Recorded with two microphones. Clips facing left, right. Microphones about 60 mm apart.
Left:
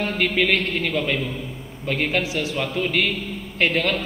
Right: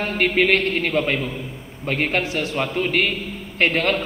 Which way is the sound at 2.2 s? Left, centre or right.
Right.